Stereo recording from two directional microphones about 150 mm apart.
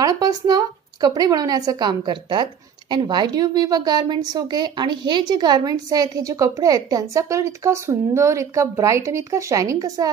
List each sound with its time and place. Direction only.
0.0 s a woman's voice: 25° right (ahead or behind)